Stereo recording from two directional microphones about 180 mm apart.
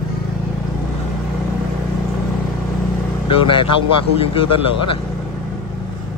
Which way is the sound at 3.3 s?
30° left (ahead or behind).